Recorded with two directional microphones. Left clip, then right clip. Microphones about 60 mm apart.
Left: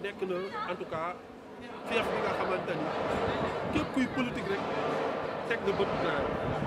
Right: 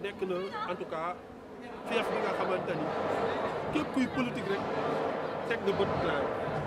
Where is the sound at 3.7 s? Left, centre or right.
Centre.